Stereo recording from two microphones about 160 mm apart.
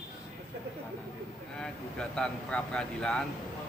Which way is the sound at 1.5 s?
5° left (ahead or behind).